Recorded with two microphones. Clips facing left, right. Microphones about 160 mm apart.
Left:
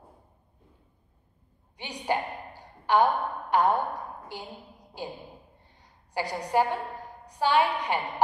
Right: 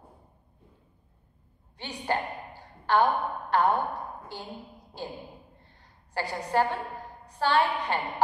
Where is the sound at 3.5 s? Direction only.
10° left (ahead or behind).